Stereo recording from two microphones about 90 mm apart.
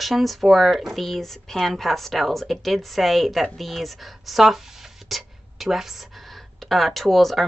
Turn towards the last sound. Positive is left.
turn(degrees=0)  # may be behind; listen again after turning